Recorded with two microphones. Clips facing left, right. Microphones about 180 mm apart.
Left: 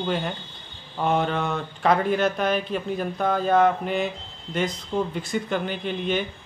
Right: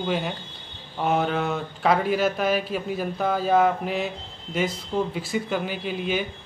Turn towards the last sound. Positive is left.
turn(degrees=-5)  # may be behind; listen again after turning